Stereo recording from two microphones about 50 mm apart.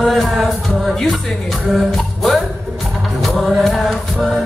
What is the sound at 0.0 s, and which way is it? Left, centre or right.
Music, centre.